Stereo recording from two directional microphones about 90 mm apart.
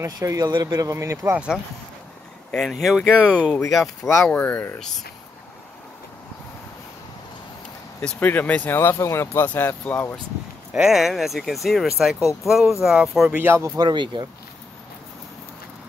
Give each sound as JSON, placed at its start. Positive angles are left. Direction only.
{"t": 0.0, "sound": "speech", "side_deg": -40}
{"t": 1.3, "sound": "speech", "side_deg": -10}
{"t": 2.5, "sound": "speech", "side_deg": 5}
{"t": 4.3, "sound": "speech", "side_deg": 15}
{"t": 8.0, "sound": "speech", "side_deg": 10}
{"t": 8.7, "sound": "speech", "side_deg": 30}
{"t": 9.8, "sound": "speech", "side_deg": 15}
{"t": 10.7, "sound": "speech", "side_deg": -5}
{"t": 13.3, "sound": "speech", "side_deg": -25}
{"t": 13.7, "sound": "speech", "side_deg": -60}